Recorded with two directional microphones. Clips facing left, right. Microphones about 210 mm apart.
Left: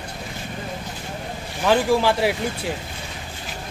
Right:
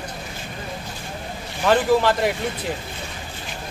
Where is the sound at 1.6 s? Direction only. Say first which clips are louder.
Right 1 dB; centre (ahead or behind).